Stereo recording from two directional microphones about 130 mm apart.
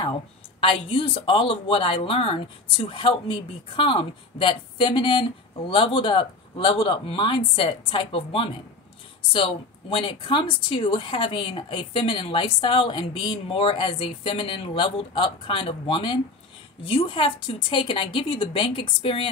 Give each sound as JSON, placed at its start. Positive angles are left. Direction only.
{"t": 0.6, "sound": "speech", "side_deg": 40}